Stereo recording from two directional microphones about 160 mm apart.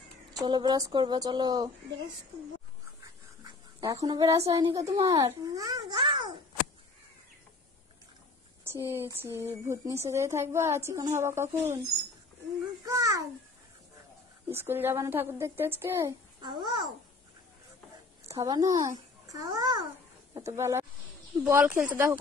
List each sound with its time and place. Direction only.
0.3 s speech: 25° right (ahead or behind)
3.4 s speech: 20° right (ahead or behind)
5.0 s a child's voice: 40° right (ahead or behind)
5.4 s babbling: 20° right (ahead or behind)
8.6 s a woman's voice: 15° right (ahead or behind)
12.8 s babbling: 20° right (ahead or behind)
14.5 s a woman's voice: 15° right (ahead or behind)
16.3 s a child's voice: 30° right (ahead or behind)
18.3 s a child's voice: 20° right (ahead or behind)